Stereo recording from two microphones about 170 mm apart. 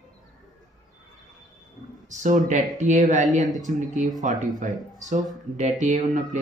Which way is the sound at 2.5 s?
45° right (ahead or behind).